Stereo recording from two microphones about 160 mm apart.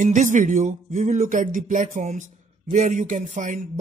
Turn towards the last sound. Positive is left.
turn(degrees=-50)  # may be behind; listen again after turning